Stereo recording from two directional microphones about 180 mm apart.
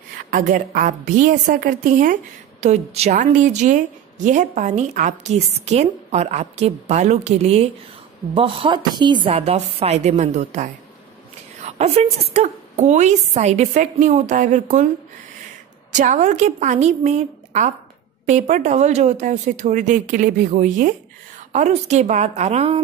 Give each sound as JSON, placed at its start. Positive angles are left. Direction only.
{"t": 0.2, "sound": "speech", "side_deg": -50}
{"t": 2.6, "sound": "a woman's voice", "side_deg": -35}
{"t": 15.9, "sound": "a woman's voice", "side_deg": -40}